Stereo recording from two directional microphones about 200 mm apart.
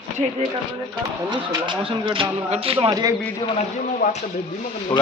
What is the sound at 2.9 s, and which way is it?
Speech, 15° right (ahead or behind).